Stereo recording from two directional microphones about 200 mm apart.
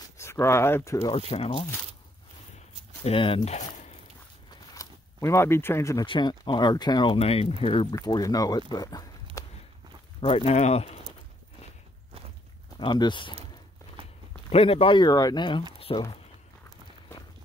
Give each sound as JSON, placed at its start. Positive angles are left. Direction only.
{"t": 0.2, "sound": "speech", "side_deg": 15}
{"t": 1.1, "sound": "speech", "side_deg": 30}
{"t": 3.0, "sound": "speech", "side_deg": 30}
{"t": 4.7, "sound": "speech", "side_deg": 15}
{"t": 12.7, "sound": "speech", "side_deg": 25}
{"t": 14.5, "sound": "speech", "side_deg": 30}